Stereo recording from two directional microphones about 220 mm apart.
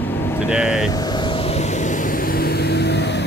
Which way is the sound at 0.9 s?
20° left (ahead or behind).